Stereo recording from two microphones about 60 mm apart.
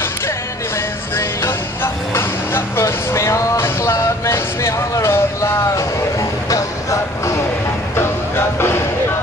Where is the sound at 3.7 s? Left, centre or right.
Left.